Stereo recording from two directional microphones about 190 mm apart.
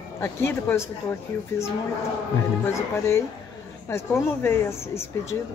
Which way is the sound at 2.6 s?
15° left (ahead or behind).